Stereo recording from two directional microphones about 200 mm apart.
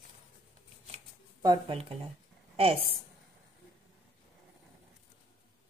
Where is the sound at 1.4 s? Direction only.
20° right (ahead or behind).